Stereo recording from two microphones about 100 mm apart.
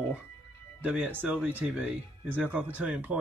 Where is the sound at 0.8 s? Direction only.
15° right (ahead or behind).